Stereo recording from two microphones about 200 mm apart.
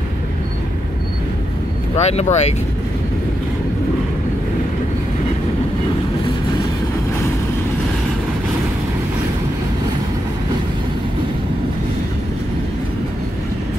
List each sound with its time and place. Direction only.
2.0 s speech: 30° left (ahead or behind)